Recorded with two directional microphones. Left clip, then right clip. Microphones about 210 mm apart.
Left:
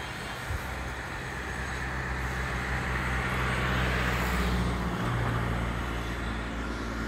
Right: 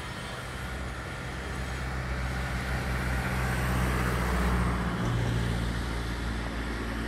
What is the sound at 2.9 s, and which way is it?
Vehicle, 50° right (ahead or behind).